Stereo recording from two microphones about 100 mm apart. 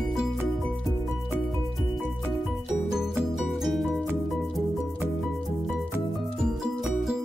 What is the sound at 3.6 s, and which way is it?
Music, centre (ahead or behind).